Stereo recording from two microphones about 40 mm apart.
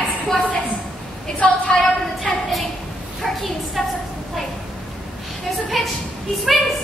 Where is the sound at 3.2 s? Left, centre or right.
Centre.